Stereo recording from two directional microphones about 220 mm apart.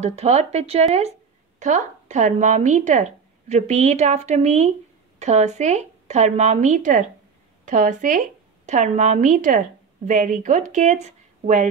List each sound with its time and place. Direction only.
0.0 s speech: 30° right (ahead or behind)